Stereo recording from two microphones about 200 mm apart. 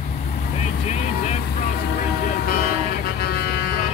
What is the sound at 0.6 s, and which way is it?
Vehicle, 35° left (ahead or behind).